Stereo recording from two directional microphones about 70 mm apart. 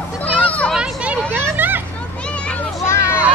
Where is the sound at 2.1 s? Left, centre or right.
Centre.